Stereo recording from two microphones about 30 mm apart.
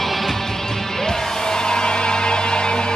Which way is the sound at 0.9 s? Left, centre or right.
Centre.